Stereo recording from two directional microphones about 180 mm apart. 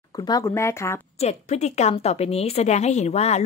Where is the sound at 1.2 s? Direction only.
35° left (ahead or behind).